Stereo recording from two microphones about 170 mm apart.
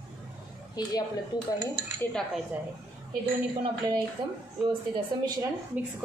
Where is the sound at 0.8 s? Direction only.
20° left (ahead or behind).